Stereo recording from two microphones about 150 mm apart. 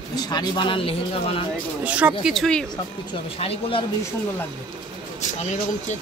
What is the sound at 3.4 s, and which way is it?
Speech, 40° left (ahead or behind).